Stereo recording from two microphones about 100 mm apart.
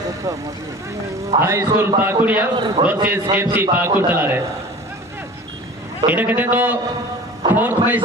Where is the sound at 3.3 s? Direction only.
20° right (ahead or behind).